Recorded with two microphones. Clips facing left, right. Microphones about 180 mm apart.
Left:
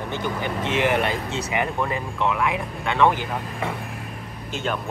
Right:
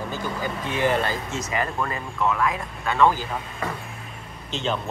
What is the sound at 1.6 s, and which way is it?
Speech, 5° left (ahead or behind).